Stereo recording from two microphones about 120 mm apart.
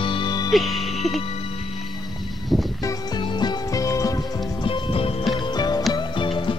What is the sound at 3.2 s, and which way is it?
Music, 35° left (ahead or behind).